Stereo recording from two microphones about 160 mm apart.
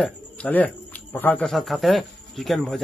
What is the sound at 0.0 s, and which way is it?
A man's voice, 10° left (ahead or behind).